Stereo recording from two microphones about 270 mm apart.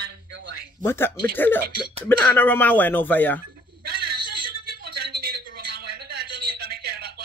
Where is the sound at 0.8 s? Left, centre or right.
Centre.